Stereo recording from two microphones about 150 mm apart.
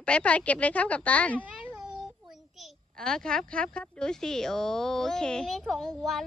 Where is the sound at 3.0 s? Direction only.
5° left (ahead or behind).